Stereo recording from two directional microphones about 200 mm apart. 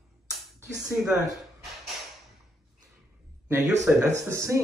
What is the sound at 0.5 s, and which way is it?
Speech, 15° right (ahead or behind).